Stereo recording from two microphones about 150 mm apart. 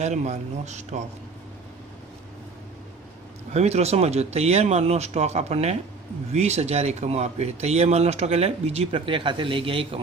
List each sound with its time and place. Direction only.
0.0 s speech: 50° right (ahead or behind)
3.5 s speech: 45° right (ahead or behind)